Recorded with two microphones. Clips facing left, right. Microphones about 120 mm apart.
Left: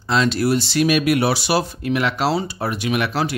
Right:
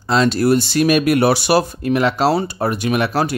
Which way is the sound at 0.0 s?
40° right (ahead or behind).